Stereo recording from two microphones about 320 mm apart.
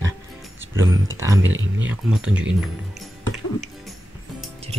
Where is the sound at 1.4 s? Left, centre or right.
Right.